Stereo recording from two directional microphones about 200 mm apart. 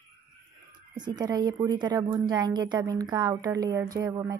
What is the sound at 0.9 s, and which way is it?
Speech, 20° right (ahead or behind).